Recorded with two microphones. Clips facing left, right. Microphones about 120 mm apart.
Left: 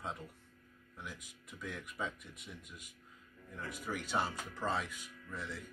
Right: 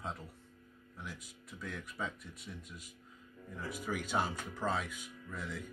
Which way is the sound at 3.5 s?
5° right (ahead or behind).